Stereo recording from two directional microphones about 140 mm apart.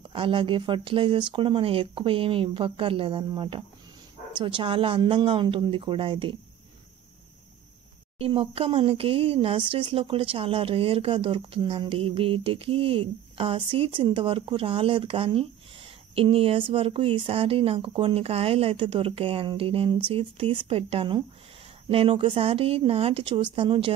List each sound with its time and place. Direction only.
0.1 s speech: 40° right (ahead or behind)
8.3 s speech: 40° right (ahead or behind)